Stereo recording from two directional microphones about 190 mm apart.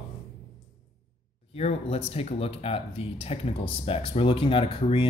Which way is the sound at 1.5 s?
35° left (ahead or behind).